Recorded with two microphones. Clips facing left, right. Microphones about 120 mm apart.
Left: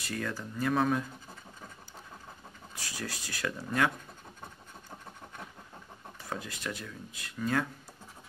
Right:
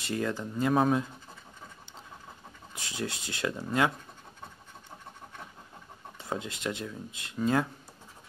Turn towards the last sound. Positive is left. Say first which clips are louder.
# right 4 dB
turn(degrees=-25)  # may be behind; listen again after turning